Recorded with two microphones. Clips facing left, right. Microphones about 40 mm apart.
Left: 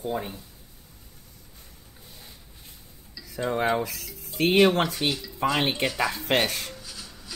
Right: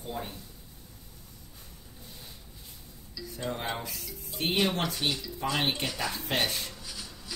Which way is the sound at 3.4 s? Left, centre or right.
Left.